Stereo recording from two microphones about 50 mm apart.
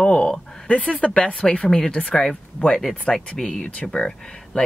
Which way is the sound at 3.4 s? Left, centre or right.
Centre.